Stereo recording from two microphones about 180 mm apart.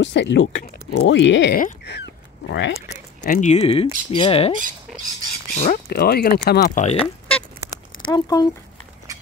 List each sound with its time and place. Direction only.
0.0 s speech: 80° left
0.9 s speech: 90° left
1.5 s a sound: 60° left (ahead or behind)
3.3 s speech: 40° left (ahead or behind)
5.5 s speech: 45° left (ahead or behind)
5.9 s speech: 60° left (ahead or behind); by 7.0 s 45° left (ahead or behind)
7.0 s duck: 5° left (ahead or behind)
8.1 s speech: 20° left (ahead or behind)